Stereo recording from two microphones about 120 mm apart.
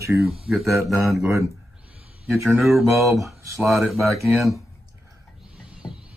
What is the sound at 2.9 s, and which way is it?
Speech, centre (ahead or behind).